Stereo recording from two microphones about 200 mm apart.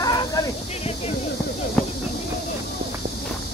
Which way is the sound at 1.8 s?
5° left (ahead or behind).